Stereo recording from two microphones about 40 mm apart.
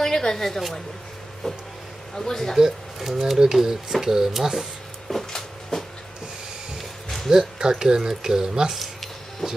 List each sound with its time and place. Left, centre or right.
0.0 s a woman's voice: centre
2.5 s speech: centre
5.1 s a sound: centre
7.2 s speech: centre
8.7 s music: centre